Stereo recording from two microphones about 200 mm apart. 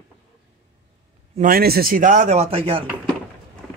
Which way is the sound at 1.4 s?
50° right (ahead or behind).